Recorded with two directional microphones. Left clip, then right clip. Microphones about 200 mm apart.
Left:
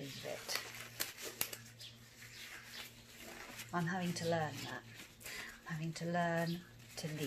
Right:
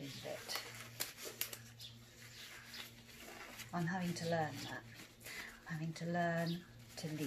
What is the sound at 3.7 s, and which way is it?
Speech, 35° left (ahead or behind).